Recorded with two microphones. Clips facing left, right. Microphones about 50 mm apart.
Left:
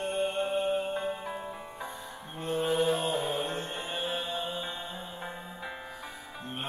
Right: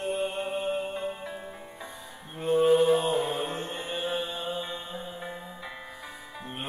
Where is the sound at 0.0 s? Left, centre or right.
Centre.